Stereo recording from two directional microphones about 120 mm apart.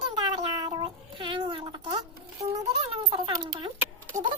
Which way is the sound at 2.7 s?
55° right (ahead or behind).